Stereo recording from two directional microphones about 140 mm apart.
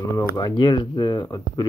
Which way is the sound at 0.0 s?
25° left (ahead or behind).